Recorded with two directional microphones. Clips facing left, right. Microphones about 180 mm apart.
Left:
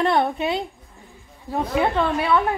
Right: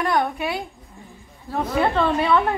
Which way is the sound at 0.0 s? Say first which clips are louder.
Left 2 dB; 25° left (ahead or behind).